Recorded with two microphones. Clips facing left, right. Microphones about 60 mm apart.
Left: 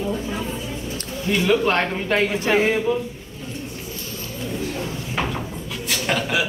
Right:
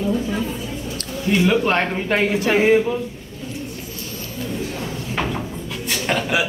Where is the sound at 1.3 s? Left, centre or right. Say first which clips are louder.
Right 1 dB; centre.